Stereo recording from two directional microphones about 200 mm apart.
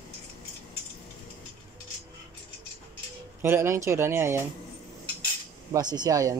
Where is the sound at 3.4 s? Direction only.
10° right (ahead or behind).